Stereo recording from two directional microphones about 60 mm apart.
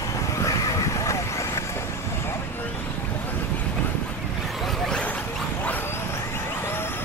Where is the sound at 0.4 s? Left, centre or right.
Left.